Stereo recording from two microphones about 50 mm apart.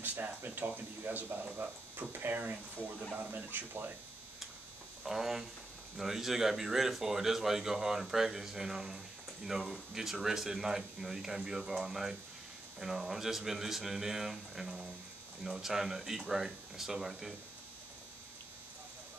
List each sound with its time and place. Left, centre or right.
0.0 s speech: right
5.0 s speech: centre